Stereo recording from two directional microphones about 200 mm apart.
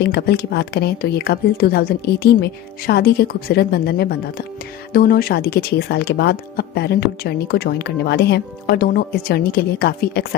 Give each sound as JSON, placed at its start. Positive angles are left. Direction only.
{"t": 0.0, "sound": "speech", "side_deg": 55}